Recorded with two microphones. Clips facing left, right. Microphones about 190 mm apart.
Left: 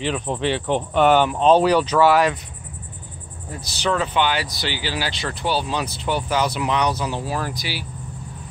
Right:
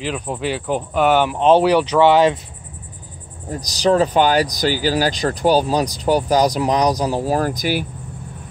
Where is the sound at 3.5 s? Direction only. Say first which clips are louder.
Right 7 dB; 40° right (ahead or behind).